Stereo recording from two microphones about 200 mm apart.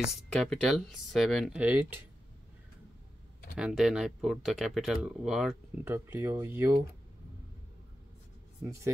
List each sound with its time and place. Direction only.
0.0 s speech: centre (ahead or behind)
3.5 s speech: 5° right (ahead or behind)